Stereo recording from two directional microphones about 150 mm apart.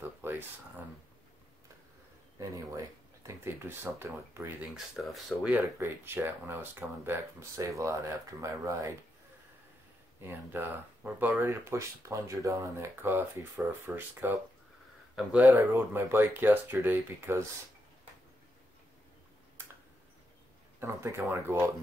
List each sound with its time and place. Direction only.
0.2 s a sound: 15° right (ahead or behind)
2.3 s speech: 25° right (ahead or behind)
4.7 s speech: centre (ahead or behind)
5.5 s speech: 15° right (ahead or behind)
10.2 s speech: 15° right (ahead or behind)
20.8 s speech: 15° right (ahead or behind)